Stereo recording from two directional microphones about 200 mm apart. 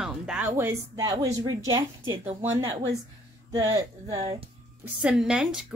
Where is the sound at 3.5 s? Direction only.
15° right (ahead or behind).